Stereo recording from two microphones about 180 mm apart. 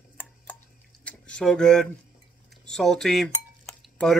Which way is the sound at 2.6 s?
Centre (ahead or behind).